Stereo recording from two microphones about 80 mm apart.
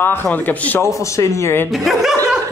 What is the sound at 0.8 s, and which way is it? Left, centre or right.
Speech, left.